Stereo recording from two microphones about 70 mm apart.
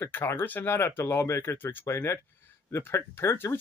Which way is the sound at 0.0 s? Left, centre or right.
Left.